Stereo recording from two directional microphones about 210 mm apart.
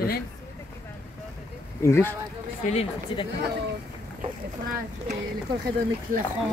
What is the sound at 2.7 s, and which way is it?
Speech, 30° left (ahead or behind).